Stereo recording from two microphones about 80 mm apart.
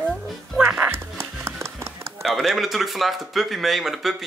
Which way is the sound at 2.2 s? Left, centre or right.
Centre.